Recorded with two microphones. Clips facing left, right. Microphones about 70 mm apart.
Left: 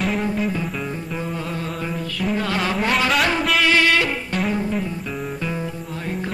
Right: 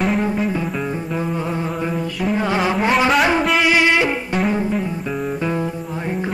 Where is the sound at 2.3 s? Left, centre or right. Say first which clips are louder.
Right 4 dB; centre.